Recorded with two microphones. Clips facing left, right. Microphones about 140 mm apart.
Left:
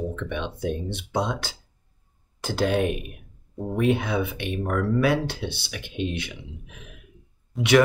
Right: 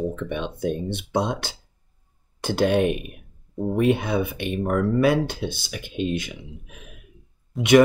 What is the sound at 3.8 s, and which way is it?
Speech, 55° right (ahead or behind).